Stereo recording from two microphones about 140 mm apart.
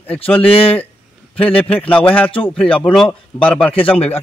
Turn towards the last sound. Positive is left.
turn(degrees=10)  # may be behind; listen again after turning